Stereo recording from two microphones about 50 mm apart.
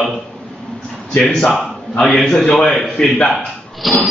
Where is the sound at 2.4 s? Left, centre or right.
Centre.